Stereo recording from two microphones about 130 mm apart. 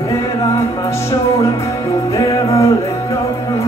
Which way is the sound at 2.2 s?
25° left (ahead or behind).